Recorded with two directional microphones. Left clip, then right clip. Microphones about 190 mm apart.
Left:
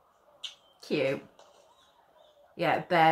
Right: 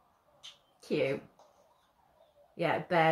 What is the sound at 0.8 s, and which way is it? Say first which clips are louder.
Speech: left 2 dB; centre (ahead or behind).